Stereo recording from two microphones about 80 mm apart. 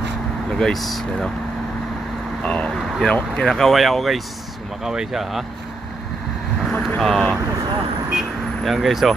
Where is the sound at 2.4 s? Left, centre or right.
Centre.